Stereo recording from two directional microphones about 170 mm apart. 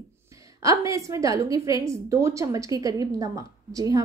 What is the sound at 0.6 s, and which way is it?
A woman's voice, 20° right (ahead or behind).